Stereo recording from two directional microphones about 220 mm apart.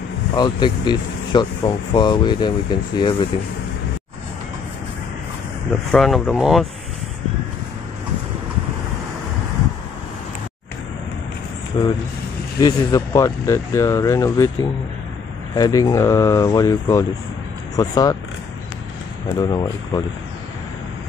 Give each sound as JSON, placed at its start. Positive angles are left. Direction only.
{"t": 0.4, "sound": "speech", "side_deg": 20}
{"t": 5.9, "sound": "speech", "side_deg": 0}
{"t": 11.7, "sound": "speech", "side_deg": 20}
{"t": 19.3, "sound": "speech", "side_deg": 20}